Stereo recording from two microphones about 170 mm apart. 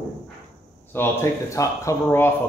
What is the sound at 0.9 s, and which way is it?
Speech, 15° left (ahead or behind).